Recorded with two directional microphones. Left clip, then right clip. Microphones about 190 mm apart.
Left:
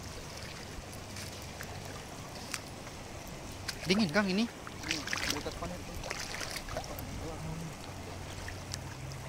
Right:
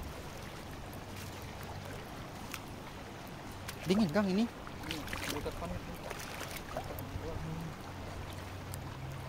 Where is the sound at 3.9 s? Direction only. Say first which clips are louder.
Left 2 dB; 5° right (ahead or behind).